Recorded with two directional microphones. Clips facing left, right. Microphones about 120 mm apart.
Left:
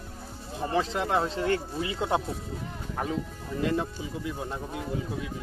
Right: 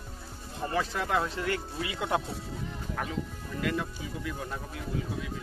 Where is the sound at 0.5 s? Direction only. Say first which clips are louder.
Left 3 dB; 25° left (ahead or behind).